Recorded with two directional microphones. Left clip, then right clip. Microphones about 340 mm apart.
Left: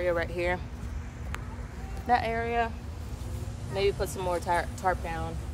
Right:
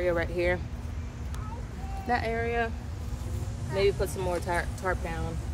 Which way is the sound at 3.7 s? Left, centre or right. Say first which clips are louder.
Right 2 dB; centre.